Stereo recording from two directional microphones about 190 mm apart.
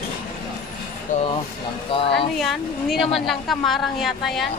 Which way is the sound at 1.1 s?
40° left (ahead or behind).